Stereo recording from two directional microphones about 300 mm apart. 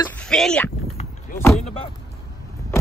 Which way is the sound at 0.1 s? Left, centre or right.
Centre.